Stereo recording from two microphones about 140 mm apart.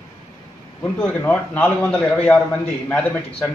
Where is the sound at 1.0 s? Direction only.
15° left (ahead or behind).